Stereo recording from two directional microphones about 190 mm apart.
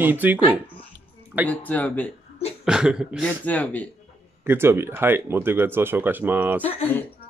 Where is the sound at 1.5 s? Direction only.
10° left (ahead or behind).